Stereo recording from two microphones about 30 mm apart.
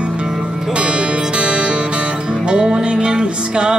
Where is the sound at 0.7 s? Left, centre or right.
Right.